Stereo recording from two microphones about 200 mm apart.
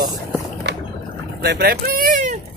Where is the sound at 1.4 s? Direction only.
50° right (ahead or behind).